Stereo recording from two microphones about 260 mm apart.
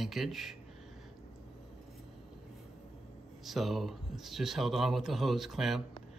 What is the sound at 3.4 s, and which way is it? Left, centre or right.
Speech, centre.